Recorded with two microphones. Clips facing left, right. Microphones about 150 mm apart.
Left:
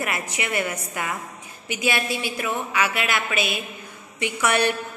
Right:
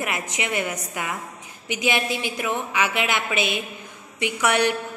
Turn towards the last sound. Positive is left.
turn(degrees=-15)  # may be behind; listen again after turning